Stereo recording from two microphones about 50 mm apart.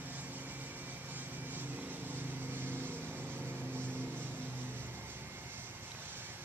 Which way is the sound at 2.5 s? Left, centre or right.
Right.